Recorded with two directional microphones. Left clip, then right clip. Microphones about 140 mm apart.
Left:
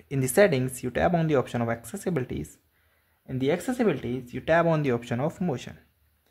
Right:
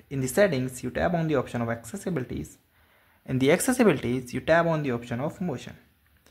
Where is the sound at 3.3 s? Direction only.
10° right (ahead or behind).